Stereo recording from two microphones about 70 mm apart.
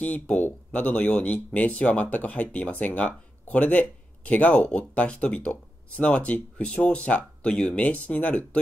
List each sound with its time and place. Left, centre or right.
0.0 s speech: left